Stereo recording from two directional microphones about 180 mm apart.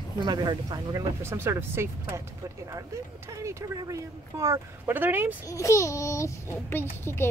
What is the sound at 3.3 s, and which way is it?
Speech, 20° right (ahead or behind).